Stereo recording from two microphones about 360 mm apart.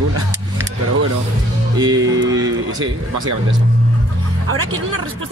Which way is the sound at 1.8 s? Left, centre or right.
Centre.